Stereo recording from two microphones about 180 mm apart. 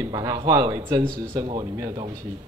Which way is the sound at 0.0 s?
20° right (ahead or behind).